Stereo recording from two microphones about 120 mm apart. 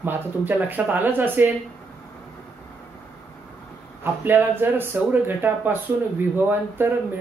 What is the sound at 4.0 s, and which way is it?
Speech, 15° right (ahead or behind).